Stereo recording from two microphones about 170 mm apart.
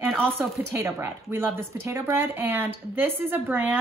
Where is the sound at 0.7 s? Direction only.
15° right (ahead or behind).